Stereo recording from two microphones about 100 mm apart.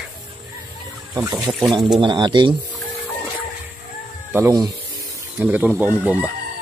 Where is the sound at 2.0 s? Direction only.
50° right (ahead or behind).